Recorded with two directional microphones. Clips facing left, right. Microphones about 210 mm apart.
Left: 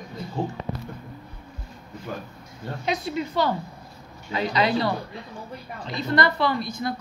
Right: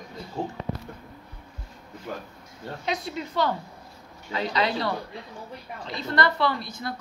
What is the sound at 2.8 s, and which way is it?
A woman's voice, 5° left (ahead or behind).